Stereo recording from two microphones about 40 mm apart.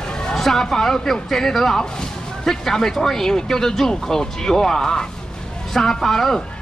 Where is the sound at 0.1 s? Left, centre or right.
Centre.